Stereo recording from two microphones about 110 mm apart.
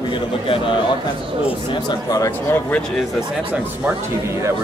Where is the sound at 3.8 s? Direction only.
20° right (ahead or behind).